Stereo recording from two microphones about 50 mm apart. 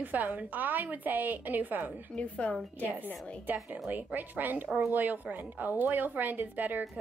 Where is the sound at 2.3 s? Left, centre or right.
Left.